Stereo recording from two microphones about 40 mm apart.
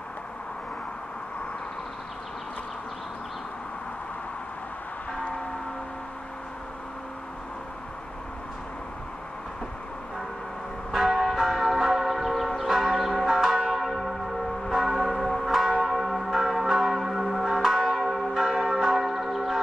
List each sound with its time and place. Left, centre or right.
10.9 s church bell: centre
13.7 s church bell: centre
14.0 s church bell: centre
15.0 s church bell: centre
15.4 s church bell: centre
17.7 s church bell: centre